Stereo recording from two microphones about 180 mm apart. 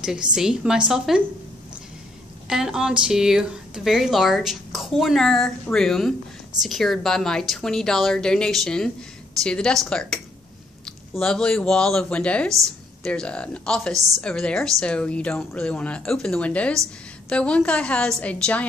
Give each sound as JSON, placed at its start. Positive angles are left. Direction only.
{"t": 0.0, "sound": "speech", "side_deg": -5}
{"t": 2.4, "sound": "speech", "side_deg": -5}
{"t": 13.9, "sound": "a woman's voice", "side_deg": -20}
{"t": 14.2, "sound": "a woman's voice", "side_deg": 5}